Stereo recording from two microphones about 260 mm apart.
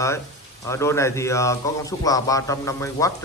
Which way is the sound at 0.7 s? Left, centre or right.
Centre.